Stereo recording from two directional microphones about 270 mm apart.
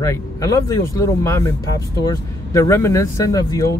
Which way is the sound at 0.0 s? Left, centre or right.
Centre.